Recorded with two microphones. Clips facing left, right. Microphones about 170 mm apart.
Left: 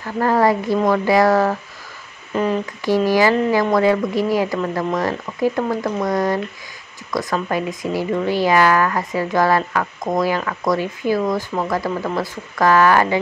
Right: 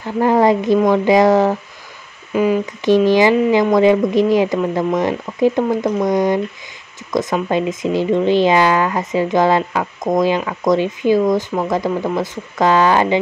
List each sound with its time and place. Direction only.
0.0 s speech: 20° right (ahead or behind)
2.3 s speech: 5° right (ahead or behind)
2.6 s speech: 20° right (ahead or behind)